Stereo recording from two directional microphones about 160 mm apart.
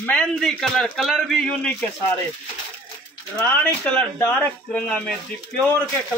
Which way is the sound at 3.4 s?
10° left (ahead or behind).